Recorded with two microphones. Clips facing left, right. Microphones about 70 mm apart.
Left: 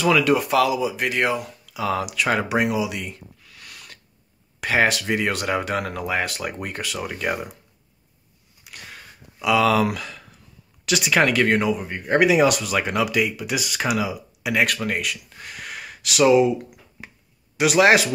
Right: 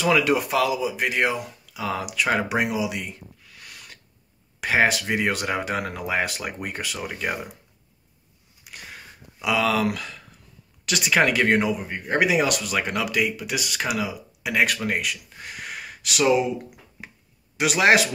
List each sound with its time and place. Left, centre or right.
0.0 s speech: centre
0.4 s speech: centre
9.4 s speech: centre
11.2 s speech: centre
11.8 s speech: centre
12.4 s speech: centre
14.6 s speech: centre
15.4 s a sound: centre
16.2 s speech: centre
17.6 s speech: centre